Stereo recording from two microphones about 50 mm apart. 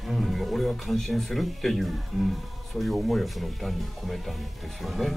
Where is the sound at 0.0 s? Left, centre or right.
Centre.